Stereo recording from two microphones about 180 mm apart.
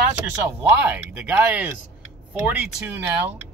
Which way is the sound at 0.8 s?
10° right (ahead or behind).